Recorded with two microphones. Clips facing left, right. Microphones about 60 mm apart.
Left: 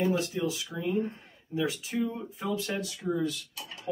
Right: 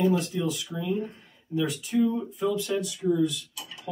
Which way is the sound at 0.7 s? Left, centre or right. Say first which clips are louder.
Even; left.